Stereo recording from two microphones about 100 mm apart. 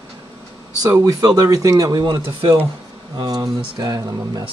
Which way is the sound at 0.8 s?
40° right (ahead or behind).